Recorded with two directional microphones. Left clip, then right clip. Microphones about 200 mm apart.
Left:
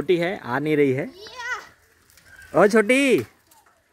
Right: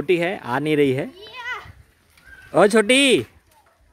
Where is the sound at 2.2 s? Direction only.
50° left (ahead or behind).